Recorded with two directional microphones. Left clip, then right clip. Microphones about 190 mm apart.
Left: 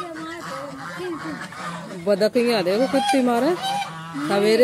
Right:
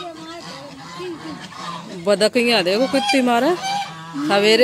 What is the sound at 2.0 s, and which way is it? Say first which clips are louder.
Speech: right 3 dB; centre (ahead or behind).